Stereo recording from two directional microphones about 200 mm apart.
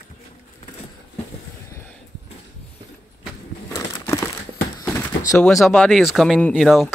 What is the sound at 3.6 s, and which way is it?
Crumpling, 15° left (ahead or behind).